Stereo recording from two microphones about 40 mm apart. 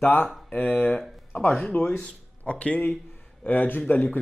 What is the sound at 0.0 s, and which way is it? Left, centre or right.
Speech, left.